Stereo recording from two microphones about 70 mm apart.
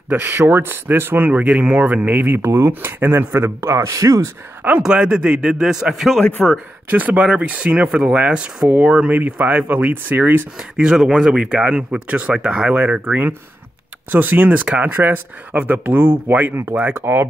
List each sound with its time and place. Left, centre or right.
0.1 s speech: right
3.9 s speech: right
4.8 s speech: centre
6.4 s speech: centre
7.1 s speech: centre
10.6 s speech: centre; by 17.3 s right